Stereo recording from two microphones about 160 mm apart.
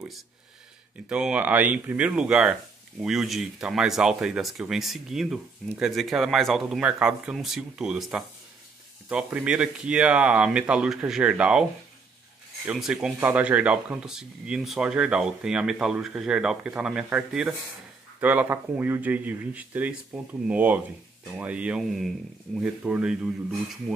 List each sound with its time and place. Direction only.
1.0 s speech: 5° right (ahead or behind)
12.6 s speech: 5° right (ahead or behind)